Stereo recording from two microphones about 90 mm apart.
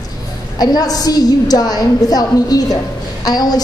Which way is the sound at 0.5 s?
45° left (ahead or behind).